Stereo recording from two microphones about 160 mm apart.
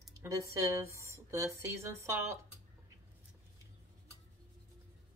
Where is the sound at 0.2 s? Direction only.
20° right (ahead or behind).